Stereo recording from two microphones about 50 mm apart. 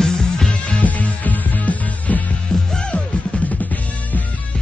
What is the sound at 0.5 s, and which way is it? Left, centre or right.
Music, left.